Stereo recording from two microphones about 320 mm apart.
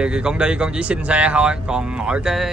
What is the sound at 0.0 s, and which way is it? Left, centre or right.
Speech, centre.